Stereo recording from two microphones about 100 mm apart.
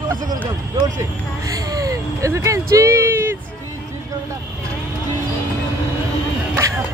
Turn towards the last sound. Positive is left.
turn(degrees=-30)  # may be behind; listen again after turning